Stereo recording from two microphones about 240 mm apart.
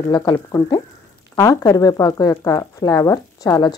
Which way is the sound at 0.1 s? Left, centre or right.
Centre.